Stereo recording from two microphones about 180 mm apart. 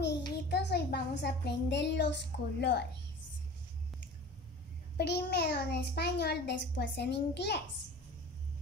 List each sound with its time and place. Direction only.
0.5 s a child's voice: 65° left (ahead or behind)
4.9 s a child's voice: 65° left (ahead or behind)